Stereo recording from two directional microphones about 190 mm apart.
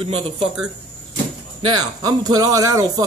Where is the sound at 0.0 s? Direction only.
35° right (ahead or behind).